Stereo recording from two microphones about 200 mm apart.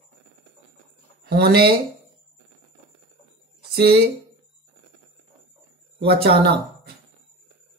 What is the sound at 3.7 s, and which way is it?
Speech, 50° right (ahead or behind).